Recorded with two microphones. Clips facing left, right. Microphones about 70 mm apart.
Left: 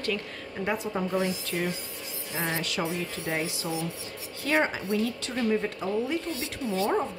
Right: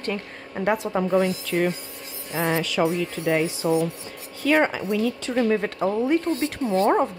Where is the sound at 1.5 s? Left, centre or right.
Right.